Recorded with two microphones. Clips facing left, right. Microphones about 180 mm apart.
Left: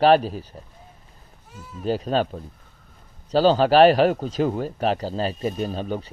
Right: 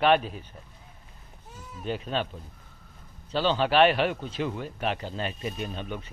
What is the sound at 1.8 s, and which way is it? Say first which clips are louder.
A man's voice: left 8 dB; 35° left (ahead or behind).